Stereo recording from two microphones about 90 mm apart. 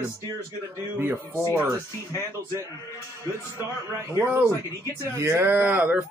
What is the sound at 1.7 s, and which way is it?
Speech, 35° right (ahead or behind).